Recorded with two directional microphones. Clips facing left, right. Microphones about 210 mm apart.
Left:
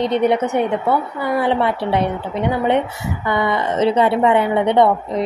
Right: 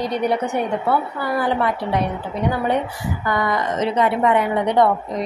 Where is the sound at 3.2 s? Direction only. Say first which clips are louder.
Left 3 dB; 25° left (ahead or behind).